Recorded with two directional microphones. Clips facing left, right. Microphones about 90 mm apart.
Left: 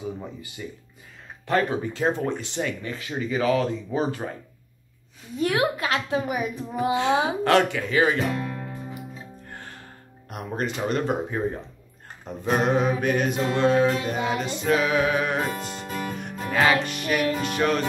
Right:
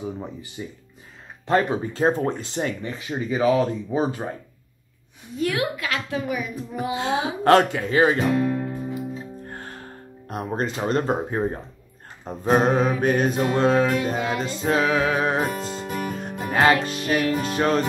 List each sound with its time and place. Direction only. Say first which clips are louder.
0.6 s speech: right 1 dB; 25° right (ahead or behind)
3.0 s speech: right 3 dB; 20° right (ahead or behind)
5.4 s a woman's voice: left 1 dB; 30° left (ahead or behind)
6.2 s a woman's voice: even; 40° left (ahead or behind)
7.4 s speech: right 7 dB; 35° right (ahead or behind)
8.2 s music: right 6 dB; 20° right (ahead or behind)
9.5 s music: right 4 dB; 40° right (ahead or behind)
10.3 s speech: right 3 dB; 35° right (ahead or behind)
15.8 s music: right 3 dB; 15° right (ahead or behind)
16.4 s speech: right 2 dB; 35° right (ahead or behind)